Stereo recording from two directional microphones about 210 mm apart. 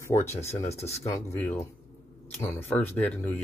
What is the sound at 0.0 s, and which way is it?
Speech, 15° left (ahead or behind).